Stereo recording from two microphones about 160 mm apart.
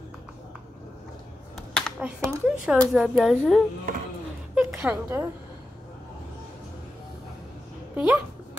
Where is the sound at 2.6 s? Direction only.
5° right (ahead or behind).